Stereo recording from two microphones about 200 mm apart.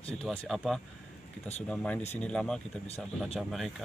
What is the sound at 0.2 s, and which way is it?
Speech, centre (ahead or behind).